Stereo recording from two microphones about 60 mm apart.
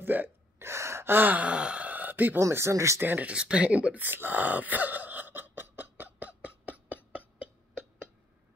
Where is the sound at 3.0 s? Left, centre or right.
Right.